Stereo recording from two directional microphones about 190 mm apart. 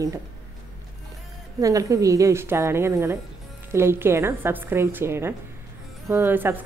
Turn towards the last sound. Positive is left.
turn(degrees=-10)  # may be behind; listen again after turning